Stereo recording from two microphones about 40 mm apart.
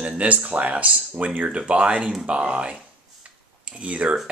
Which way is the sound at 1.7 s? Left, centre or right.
Right.